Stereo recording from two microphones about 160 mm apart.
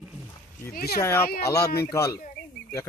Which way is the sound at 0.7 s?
70° left (ahead or behind).